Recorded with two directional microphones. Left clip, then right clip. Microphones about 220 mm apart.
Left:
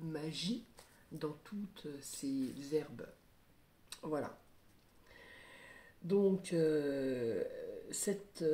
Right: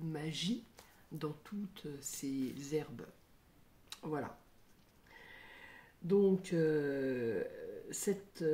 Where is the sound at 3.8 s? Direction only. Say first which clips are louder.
Left 1 dB; 35° right (ahead or behind).